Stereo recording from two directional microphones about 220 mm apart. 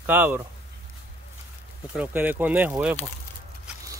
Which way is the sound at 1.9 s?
10° right (ahead or behind).